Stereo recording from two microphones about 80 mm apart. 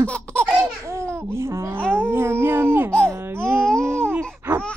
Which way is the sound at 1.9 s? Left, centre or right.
Right.